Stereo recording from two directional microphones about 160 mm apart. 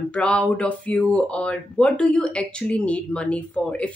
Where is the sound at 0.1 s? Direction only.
5° left (ahead or behind).